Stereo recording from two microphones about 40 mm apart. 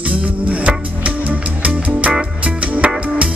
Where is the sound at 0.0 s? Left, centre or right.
Right.